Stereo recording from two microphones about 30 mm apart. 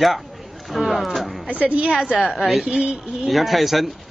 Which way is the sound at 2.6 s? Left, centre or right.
Right.